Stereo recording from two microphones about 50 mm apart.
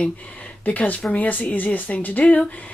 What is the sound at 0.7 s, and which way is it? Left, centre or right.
Speech, left.